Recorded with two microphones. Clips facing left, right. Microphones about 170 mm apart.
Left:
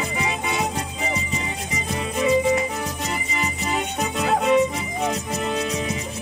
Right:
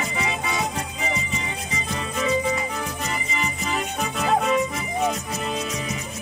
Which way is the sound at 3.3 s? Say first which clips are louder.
Left 2 dB; 15° left (ahead or behind).